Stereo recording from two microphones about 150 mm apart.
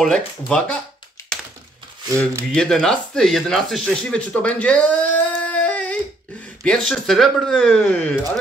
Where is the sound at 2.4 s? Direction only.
5° left (ahead or behind).